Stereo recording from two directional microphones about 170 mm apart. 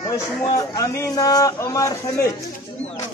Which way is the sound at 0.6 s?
20° left (ahead or behind).